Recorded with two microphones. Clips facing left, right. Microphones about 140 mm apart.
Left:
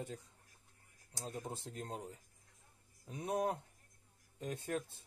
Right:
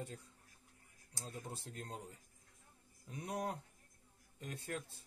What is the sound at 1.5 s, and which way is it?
Speech, 20° left (ahead or behind).